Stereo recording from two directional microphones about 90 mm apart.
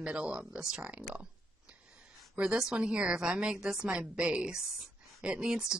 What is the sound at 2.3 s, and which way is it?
A woman's voice, 10° right (ahead or behind).